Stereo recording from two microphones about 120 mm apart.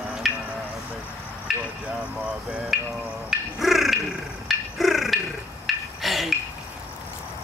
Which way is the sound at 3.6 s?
Centre (ahead or behind).